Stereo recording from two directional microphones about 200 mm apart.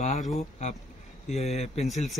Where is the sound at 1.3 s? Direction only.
35° left (ahead or behind).